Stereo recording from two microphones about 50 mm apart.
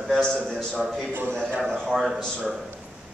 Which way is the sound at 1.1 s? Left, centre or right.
Right.